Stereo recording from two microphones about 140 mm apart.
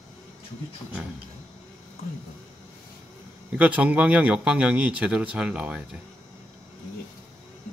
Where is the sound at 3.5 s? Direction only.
10° right (ahead or behind).